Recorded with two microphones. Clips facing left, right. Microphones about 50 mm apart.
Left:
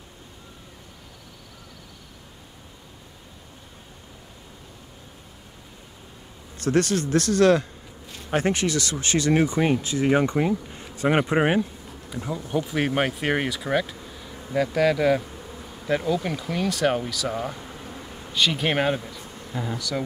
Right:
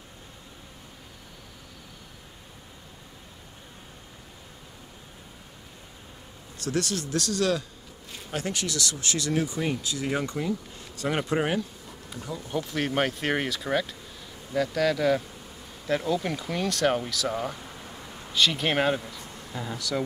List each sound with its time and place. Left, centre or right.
6.6 s speech: left
12.4 s speech: centre